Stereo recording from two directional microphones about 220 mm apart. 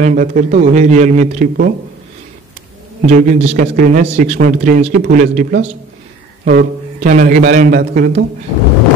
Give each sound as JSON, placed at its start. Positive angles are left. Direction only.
{"t": 0.0, "sound": "speech", "side_deg": -35}
{"t": 3.1, "sound": "speech", "side_deg": -35}